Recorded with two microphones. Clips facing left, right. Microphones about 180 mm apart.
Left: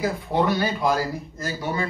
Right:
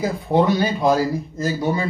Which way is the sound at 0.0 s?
20° right (ahead or behind).